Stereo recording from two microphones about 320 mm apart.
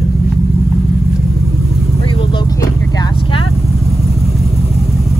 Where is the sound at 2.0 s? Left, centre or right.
Centre.